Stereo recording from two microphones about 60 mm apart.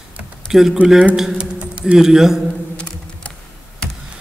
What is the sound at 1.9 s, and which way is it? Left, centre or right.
Speech, centre.